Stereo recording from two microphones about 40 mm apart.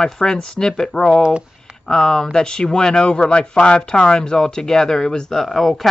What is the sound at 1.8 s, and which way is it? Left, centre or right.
Speech, centre.